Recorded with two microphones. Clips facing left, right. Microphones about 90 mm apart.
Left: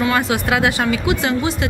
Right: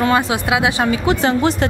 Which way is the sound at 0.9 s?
35° right (ahead or behind).